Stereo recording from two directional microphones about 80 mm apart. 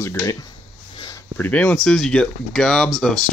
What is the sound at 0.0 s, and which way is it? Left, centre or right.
Speech, left.